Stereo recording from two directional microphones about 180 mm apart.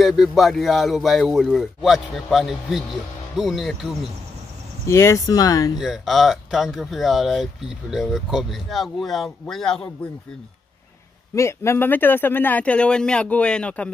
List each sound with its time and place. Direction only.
0.0 s a man's voice: centre (ahead or behind)
4.8 s speech: 15° left (ahead or behind)
5.8 s a man's voice: centre (ahead or behind)
11.3 s speech: 15° left (ahead or behind)